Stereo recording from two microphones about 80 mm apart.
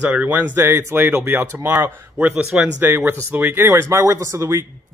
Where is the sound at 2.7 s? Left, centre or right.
Right.